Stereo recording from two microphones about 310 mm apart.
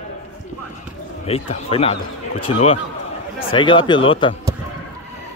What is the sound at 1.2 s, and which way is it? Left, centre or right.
A man's voice, centre.